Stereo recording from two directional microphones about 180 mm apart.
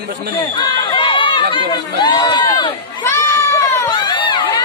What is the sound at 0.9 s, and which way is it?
Run, 25° left (ahead or behind).